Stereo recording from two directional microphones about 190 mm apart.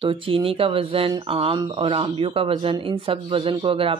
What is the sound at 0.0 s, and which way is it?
Speech, 30° right (ahead or behind).